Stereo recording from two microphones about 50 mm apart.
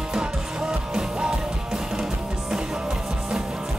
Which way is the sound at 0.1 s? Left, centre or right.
Centre.